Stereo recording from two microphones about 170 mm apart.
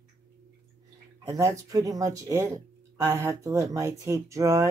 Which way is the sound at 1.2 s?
20° right (ahead or behind).